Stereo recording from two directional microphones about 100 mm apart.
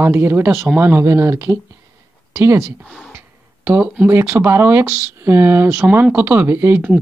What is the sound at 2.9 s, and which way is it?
Speech, 10° right (ahead or behind).